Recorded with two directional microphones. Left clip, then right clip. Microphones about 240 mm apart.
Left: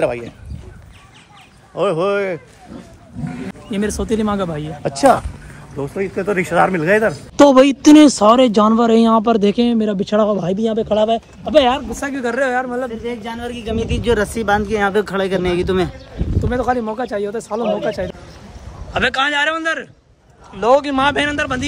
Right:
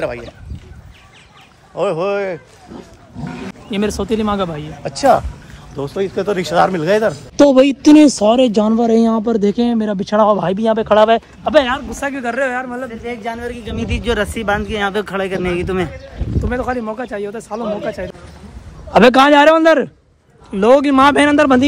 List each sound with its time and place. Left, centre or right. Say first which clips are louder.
1.8 s speech: even; centre
3.7 s speech: right 2 dB; centre
5.8 s speech: right 2 dB; centre
7.3 s a woman's voice: left 1 dB; centre
11.0 s speech: right 5 dB; right
12.0 s speech: even; centre